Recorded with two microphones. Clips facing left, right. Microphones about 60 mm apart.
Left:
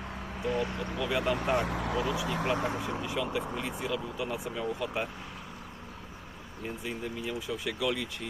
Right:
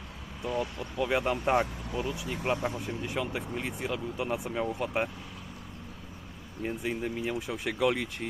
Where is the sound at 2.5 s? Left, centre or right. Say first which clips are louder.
Left 1 dB; left.